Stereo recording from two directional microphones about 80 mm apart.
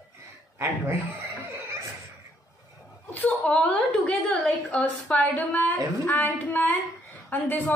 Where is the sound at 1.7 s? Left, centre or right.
Right.